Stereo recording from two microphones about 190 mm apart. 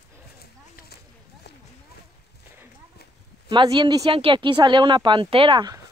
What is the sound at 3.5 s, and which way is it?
Speech, 25° right (ahead or behind).